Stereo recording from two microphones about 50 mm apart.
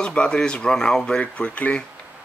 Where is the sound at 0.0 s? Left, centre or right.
Left.